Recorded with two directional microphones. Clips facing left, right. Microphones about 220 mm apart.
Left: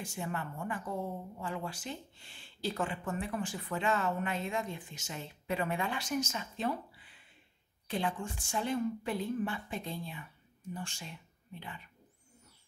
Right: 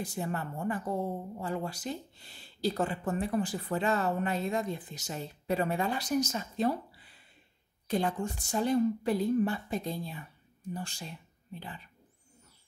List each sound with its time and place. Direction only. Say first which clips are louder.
0.0 s a woman's voice: right 4 dB; 35° right (ahead or behind)